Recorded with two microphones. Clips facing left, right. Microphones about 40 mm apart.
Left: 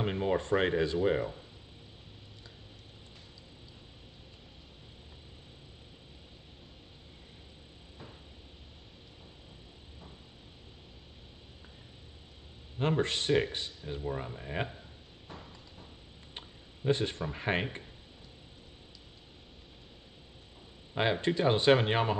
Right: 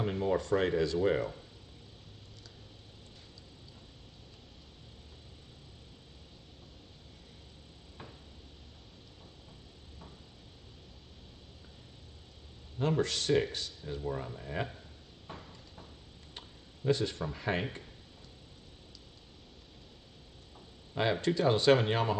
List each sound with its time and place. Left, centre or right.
0.0 s speech: left
1.0 s speech: centre
12.7 s speech: left
16.3 s tick-tock: left
17.3 s speech: left
20.9 s speech: left